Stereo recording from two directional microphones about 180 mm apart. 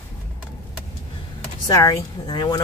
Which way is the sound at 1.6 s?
20° left (ahead or behind).